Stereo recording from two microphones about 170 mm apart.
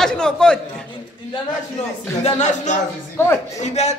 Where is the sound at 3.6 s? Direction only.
40° left (ahead or behind).